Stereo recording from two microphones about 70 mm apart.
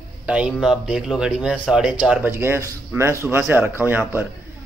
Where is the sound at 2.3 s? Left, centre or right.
Right.